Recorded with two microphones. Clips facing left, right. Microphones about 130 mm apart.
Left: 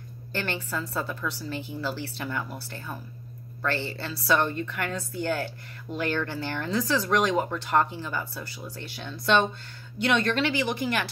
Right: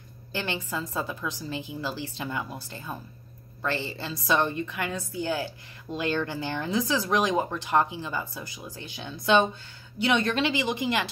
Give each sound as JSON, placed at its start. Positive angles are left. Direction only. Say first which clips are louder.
{"t": 0.3, "sound": "a woman's voice", "louder": "even", "side_deg": -15}